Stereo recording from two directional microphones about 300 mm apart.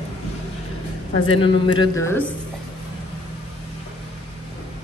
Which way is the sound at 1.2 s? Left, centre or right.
Centre.